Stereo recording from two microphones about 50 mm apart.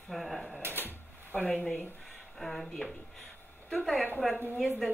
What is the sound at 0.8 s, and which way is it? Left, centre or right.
Cash register, left.